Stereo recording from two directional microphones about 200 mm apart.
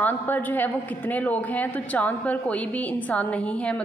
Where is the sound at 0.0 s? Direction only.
10° left (ahead or behind).